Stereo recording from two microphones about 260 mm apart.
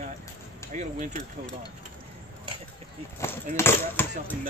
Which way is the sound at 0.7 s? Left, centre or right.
Right.